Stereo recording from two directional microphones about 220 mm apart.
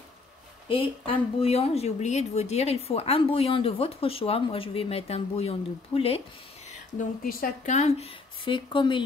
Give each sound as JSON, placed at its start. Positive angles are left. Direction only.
{"t": 0.7, "sound": "speech", "side_deg": 25}
{"t": 7.0, "sound": "speech", "side_deg": 40}